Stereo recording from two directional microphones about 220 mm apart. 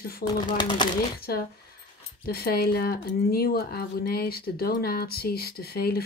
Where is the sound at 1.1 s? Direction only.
45° left (ahead or behind).